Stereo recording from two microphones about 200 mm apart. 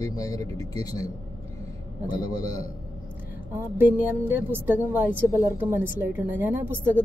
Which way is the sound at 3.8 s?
10° right (ahead or behind).